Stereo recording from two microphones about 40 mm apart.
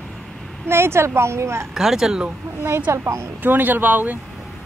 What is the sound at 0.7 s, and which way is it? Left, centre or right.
Speech, right.